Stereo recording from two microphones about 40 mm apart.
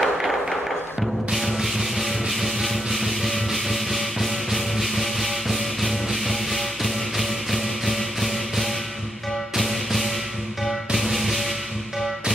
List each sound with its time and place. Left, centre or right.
0.0 s tap: centre
1.3 s music: centre